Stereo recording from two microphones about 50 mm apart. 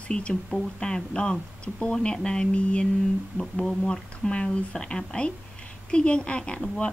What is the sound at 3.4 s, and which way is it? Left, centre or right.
Speech, centre.